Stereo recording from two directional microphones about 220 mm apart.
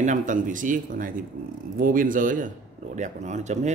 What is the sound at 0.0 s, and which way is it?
Speech, 35° right (ahead or behind).